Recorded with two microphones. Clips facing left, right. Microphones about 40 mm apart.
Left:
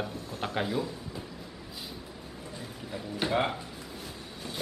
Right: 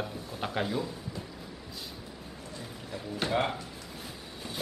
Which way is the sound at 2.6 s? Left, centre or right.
Centre.